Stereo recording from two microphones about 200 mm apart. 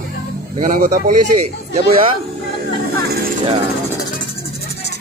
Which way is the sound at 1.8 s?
25° right (ahead or behind).